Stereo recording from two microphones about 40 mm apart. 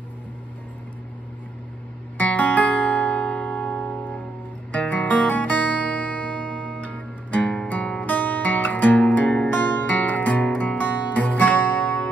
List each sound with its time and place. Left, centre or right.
2.1 s music: left
3.2 s music: left
4.7 s music: left
9.5 s music: left
9.8 s music: left